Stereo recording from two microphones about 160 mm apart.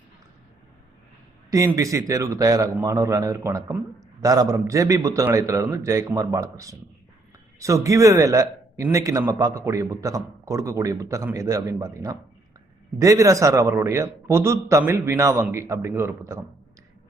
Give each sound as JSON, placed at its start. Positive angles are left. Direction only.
{"t": 1.7, "sound": "a man's voice", "side_deg": -20}